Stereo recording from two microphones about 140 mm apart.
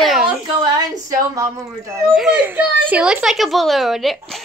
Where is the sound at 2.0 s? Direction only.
5° right (ahead or behind).